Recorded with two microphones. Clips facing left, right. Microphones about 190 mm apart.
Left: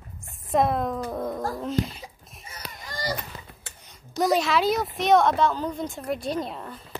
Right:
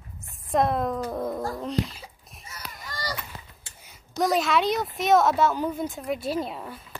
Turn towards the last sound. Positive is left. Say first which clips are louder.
# right 1 dB
turn(degrees=-5)  # may be behind; listen again after turning